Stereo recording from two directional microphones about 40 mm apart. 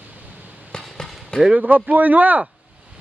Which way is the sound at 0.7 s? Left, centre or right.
Centre.